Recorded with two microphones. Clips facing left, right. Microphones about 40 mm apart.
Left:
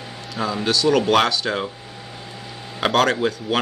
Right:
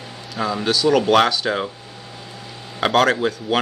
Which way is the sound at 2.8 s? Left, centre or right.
Centre.